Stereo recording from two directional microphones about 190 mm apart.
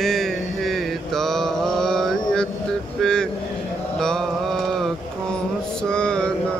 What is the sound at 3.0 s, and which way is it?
Vehicle, 5° left (ahead or behind).